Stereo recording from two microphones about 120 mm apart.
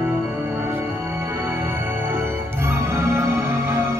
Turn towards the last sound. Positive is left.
turn(degrees=-20)  # may be behind; listen again after turning